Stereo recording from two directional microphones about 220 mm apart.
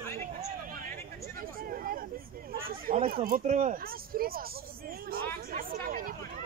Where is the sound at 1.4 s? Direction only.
40° right (ahead or behind).